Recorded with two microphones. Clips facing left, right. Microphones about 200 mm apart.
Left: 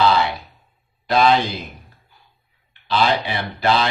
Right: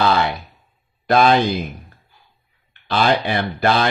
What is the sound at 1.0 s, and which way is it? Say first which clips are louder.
Speech: right 2 dB; 50° right (ahead or behind).